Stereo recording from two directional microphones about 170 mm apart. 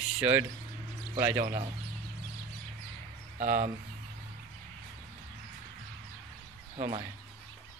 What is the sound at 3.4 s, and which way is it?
Speech, 45° right (ahead or behind).